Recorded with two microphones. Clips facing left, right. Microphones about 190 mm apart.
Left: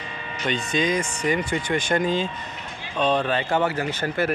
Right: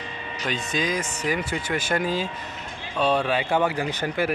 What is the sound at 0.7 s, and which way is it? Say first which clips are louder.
Speech: left 4 dB; centre (ahead or behind).